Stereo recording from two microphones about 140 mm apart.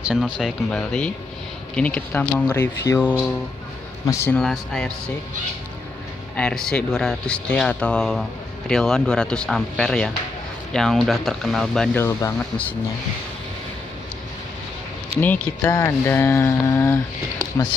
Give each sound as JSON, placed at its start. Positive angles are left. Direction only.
{"t": 0.0, "sound": "speech", "side_deg": -5}
{"t": 4.4, "sound": "speech", "side_deg": 5}
{"t": 6.3, "sound": "speech", "side_deg": 5}
{"t": 12.0, "sound": "speech", "side_deg": 20}
{"t": 15.1, "sound": "speech", "side_deg": 10}